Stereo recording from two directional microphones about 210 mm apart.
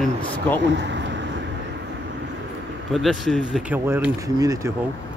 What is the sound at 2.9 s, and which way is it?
Speech, centre (ahead or behind).